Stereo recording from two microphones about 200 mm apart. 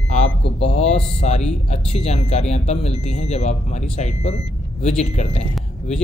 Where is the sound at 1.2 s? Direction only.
35° left (ahead or behind).